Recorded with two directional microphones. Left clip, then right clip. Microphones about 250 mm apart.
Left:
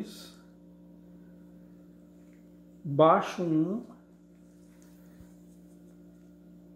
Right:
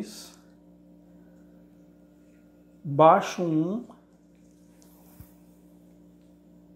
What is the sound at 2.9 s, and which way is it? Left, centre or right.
Speech, centre.